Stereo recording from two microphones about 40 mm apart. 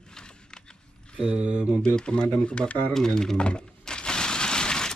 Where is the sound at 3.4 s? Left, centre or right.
Left.